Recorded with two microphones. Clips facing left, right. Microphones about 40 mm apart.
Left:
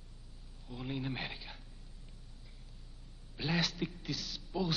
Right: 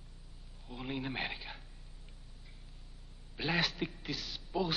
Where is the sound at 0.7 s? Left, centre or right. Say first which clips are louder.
Even; centre.